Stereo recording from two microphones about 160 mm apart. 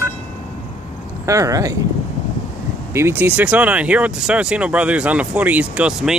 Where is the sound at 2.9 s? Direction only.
15° right (ahead or behind).